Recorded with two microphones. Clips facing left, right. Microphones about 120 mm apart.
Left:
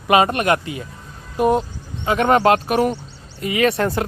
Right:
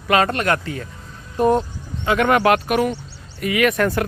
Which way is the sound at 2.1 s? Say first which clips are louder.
Left 1 dB; 30° left (ahead or behind).